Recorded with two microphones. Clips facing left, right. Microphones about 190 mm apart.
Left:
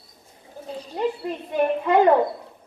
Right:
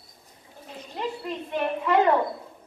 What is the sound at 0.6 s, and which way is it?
A woman's voice, 35° left (ahead or behind).